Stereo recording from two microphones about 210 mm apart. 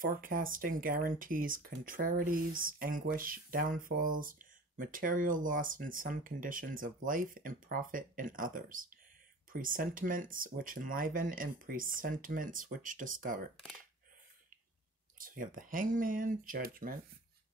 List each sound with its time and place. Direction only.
0.0 s speech: 40° right (ahead or behind)
15.1 s speech: 40° right (ahead or behind)